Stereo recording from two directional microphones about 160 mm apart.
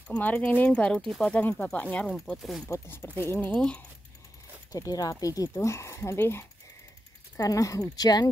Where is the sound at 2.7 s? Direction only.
15° left (ahead or behind).